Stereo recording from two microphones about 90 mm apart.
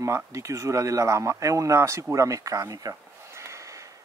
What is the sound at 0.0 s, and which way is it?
Speech, 35° right (ahead or behind).